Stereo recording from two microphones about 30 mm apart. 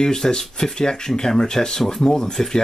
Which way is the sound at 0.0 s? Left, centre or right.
Left.